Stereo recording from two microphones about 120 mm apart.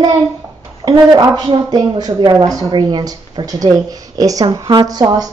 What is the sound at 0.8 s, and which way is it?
A woman's voice, 35° right (ahead or behind).